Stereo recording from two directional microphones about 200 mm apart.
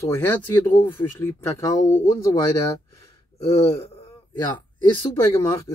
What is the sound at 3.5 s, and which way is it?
Speech, 30° left (ahead or behind).